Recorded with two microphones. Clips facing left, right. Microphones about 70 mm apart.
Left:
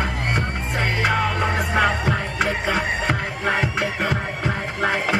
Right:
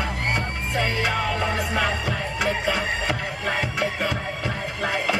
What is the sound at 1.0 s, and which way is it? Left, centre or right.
Music, left.